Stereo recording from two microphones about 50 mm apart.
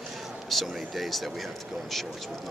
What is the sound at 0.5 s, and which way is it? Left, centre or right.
Speech, centre.